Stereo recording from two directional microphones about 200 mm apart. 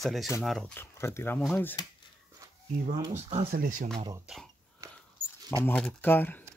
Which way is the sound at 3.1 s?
35° right (ahead or behind).